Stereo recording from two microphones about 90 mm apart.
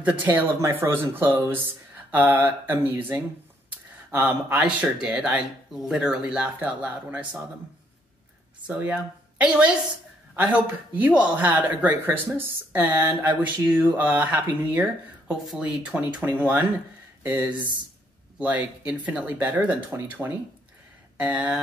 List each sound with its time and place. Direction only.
0.0 s speech: 20° right (ahead or behind)
0.6 s speech: 30° right (ahead or behind)
8.6 s speech: 15° right (ahead or behind)